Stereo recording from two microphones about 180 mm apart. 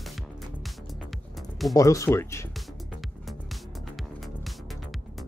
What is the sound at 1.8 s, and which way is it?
Speech, 15° left (ahead or behind).